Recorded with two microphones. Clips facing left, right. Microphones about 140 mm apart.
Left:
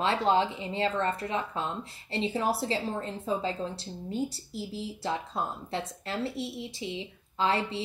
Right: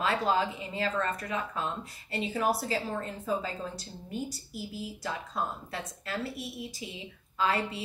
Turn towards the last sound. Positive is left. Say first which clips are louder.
# left 1 dB
turn(degrees=25)  # may be behind; listen again after turning